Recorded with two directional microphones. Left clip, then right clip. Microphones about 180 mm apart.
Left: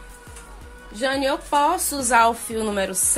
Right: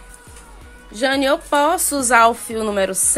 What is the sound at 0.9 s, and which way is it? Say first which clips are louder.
Speech: right 5 dB; 45° right (ahead or behind).